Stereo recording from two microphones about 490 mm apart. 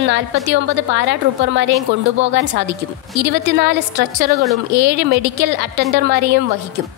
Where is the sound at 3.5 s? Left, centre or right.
Centre.